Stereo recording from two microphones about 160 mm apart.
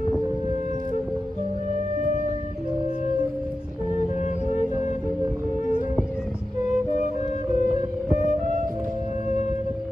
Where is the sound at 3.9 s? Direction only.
45° left (ahead or behind).